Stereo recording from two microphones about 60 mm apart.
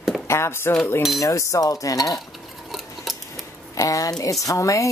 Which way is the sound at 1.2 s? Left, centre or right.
Left.